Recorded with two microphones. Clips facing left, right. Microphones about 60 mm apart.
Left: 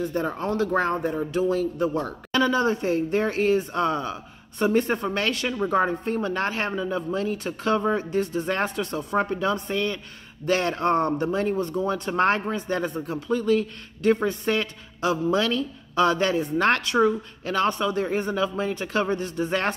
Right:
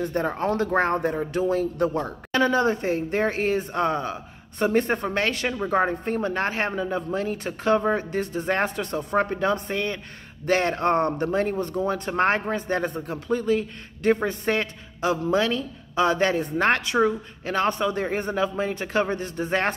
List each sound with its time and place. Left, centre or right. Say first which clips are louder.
0.0 s speech: right 2 dB; right
0.9 s speech: right 1 dB; right
1.4 s speech: right 1 dB; right
16.6 s speech: even; right